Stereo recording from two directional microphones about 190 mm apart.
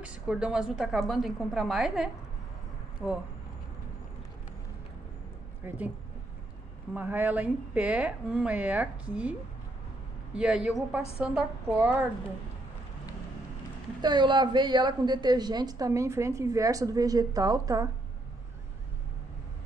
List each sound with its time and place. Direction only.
0.0 s a woman's voice: 5° right (ahead or behind)
5.6 s a woman's voice: 10° right (ahead or behind)
6.9 s a woman's voice: 10° right (ahead or behind)
10.3 s a woman's voice: 5° right (ahead or behind)
14.0 s a woman's voice: 25° right (ahead or behind)